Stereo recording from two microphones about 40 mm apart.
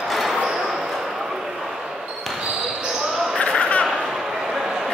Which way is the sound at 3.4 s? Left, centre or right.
Left.